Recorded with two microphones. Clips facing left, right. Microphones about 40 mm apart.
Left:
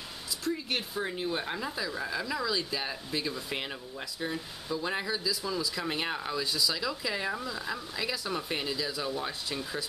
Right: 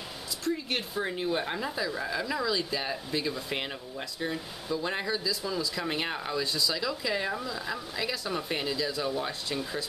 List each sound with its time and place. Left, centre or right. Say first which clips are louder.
0.5 s speech: right 2 dB; centre